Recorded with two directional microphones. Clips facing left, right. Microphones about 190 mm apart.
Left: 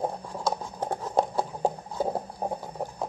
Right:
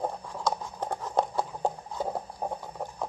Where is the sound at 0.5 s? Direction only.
5° left (ahead or behind).